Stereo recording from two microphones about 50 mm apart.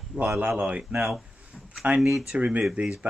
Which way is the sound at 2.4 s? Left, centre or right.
Right.